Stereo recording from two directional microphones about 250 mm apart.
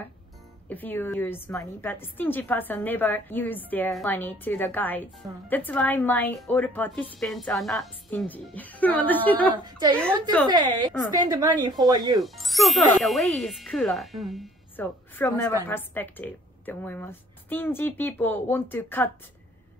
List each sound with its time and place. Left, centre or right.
0.7 s a woman's voice: centre
10.5 s speech: centre
12.2 s a woman's voice: centre